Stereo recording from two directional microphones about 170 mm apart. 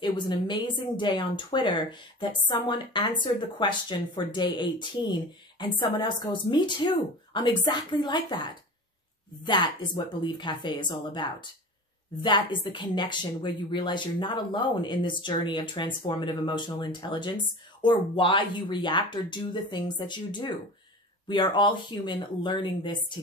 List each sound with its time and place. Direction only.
0.0 s a woman's voice: 30° left (ahead or behind)